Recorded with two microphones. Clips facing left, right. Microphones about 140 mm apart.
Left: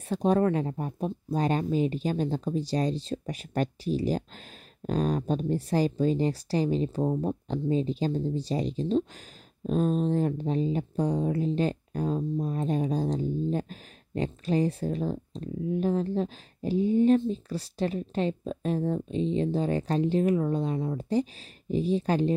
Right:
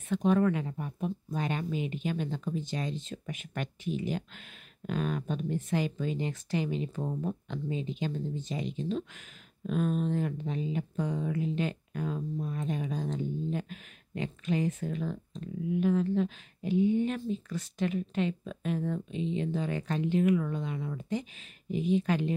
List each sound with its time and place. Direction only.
0.1 s speech: 35° left (ahead or behind)